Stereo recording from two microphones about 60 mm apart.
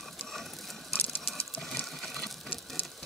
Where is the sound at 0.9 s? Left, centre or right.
Left.